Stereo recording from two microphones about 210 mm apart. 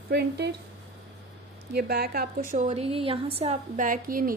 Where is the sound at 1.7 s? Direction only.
50° right (ahead or behind).